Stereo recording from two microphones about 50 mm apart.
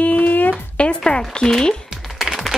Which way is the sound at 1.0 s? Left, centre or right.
Centre.